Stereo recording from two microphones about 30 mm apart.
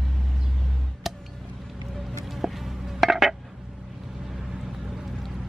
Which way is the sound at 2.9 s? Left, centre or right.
Centre.